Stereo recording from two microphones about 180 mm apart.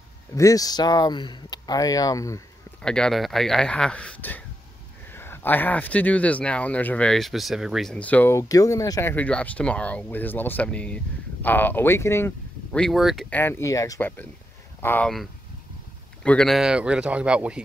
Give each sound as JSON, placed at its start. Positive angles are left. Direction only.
{"t": 0.4, "sound": "speech", "side_deg": 20}
{"t": 2.8, "sound": "speech", "side_deg": 5}
{"t": 9.1, "sound": "speech", "side_deg": 10}
{"t": 13.4, "sound": "speech", "side_deg": 15}